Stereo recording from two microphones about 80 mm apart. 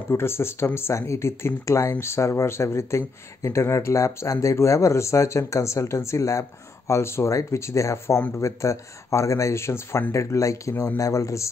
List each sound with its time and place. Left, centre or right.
0.1 s speech: left